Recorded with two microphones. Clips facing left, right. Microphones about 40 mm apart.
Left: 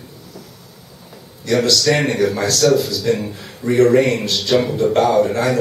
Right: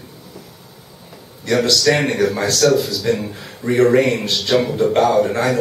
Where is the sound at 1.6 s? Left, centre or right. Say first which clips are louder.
Even; centre.